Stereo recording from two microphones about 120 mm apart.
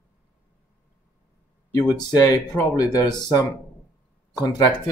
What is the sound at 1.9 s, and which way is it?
Speech, 30° left (ahead or behind).